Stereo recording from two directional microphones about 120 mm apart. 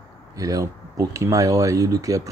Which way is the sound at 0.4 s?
30° right (ahead or behind).